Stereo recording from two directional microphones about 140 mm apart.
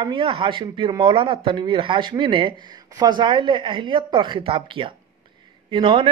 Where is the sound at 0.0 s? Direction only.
35° right (ahead or behind).